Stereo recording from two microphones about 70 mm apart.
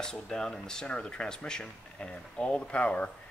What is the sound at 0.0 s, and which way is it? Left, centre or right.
Speech, centre.